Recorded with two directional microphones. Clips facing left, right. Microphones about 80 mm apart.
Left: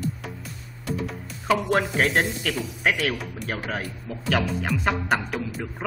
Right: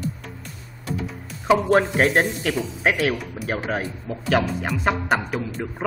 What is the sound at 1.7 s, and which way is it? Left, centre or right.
A woman's voice, centre.